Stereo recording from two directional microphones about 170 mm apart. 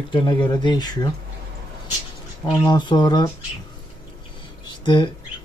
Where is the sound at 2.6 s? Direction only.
25° left (ahead or behind).